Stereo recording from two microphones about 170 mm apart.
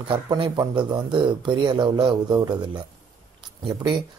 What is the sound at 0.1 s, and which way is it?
Speech, 25° right (ahead or behind).